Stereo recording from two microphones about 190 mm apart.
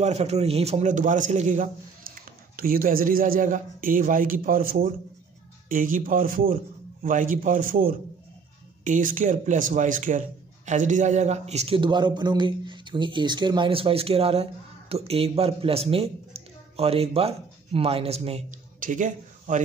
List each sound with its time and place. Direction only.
0.0 s a man's voice: 35° right (ahead or behind)